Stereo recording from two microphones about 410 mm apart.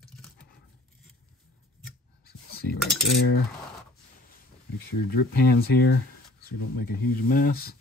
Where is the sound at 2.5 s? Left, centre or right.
Left.